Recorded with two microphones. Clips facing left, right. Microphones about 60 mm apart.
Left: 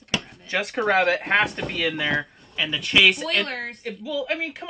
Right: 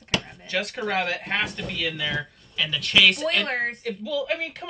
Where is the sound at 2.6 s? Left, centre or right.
Left.